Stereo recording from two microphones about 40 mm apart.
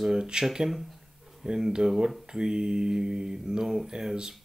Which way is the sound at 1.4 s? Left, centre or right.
Centre.